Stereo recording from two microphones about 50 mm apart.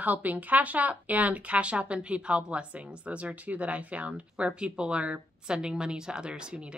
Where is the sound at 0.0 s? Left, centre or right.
Right.